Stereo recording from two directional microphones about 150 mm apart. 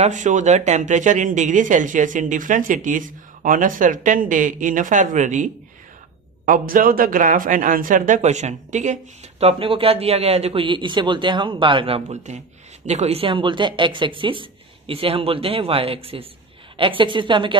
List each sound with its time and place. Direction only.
0.0 s speech: 55° right (ahead or behind)
6.4 s speech: 65° right (ahead or behind)
9.4 s speech: 40° right (ahead or behind)